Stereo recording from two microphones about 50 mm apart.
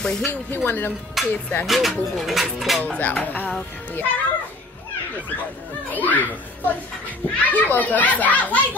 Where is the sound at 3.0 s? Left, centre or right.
Left.